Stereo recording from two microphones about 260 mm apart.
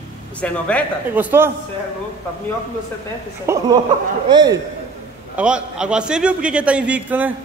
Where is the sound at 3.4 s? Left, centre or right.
Centre.